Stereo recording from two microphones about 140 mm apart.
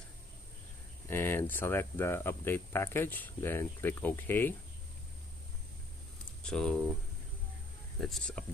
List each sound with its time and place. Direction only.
1.0 s speech: 15° left (ahead or behind)
6.4 s speech: 5° left (ahead or behind)
8.0 s speech: 5° left (ahead or behind)